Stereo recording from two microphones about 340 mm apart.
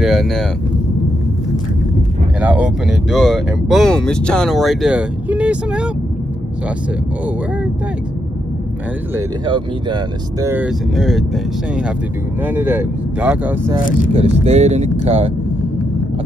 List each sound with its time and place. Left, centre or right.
0.0 s vehicle: centre
2.4 s speech: centre
9.1 s speech: centre
14.1 s speech: centre